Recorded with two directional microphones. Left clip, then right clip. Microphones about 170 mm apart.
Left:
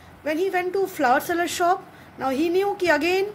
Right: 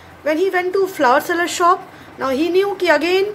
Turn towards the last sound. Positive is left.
turn(degrees=25)  # may be behind; listen again after turning